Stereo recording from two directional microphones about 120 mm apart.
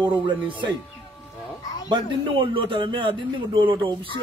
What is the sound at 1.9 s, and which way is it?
A man's voice, 45° right (ahead or behind).